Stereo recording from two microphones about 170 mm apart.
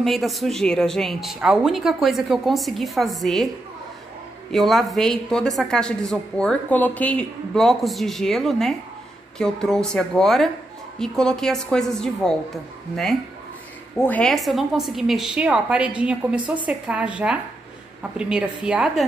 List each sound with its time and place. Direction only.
0.0 s speech: centre (ahead or behind)
4.5 s a woman's voice: centre (ahead or behind)